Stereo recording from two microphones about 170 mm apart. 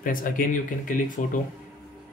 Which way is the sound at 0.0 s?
55° left (ahead or behind).